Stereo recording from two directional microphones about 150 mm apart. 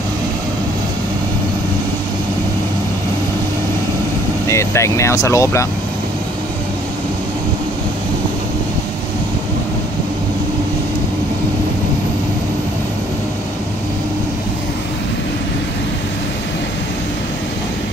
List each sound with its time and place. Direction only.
4.5 s speech: 20° left (ahead or behind)